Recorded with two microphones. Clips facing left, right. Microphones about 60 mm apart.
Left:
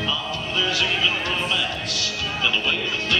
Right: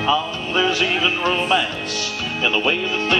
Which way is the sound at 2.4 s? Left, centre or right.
Right.